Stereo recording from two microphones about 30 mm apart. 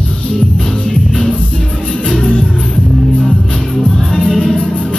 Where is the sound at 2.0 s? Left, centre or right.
Centre.